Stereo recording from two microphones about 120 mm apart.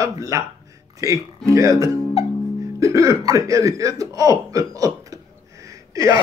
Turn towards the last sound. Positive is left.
turn(degrees=-30)  # may be behind; listen again after turning